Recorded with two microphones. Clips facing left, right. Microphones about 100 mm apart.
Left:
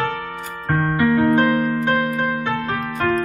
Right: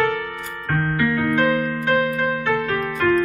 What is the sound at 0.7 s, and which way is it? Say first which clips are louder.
Music: left 3 dB; 25° left (ahead or behind).